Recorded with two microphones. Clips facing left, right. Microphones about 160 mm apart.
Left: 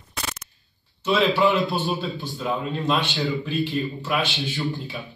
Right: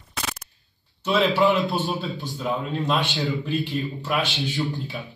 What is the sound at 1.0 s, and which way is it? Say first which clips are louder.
A man's voice: even; centre (ahead or behind).